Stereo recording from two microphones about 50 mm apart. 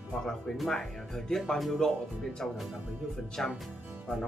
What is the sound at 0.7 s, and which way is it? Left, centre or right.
Speech, centre.